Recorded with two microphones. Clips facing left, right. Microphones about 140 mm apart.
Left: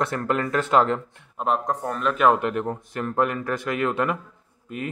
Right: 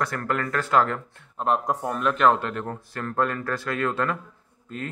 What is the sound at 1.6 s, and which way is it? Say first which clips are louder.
Speech: even; 5° right (ahead or behind).